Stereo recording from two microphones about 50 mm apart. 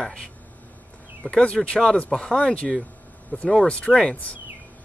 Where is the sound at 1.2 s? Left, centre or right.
Left.